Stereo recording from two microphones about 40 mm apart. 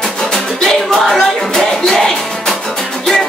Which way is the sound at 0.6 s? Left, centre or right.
Centre.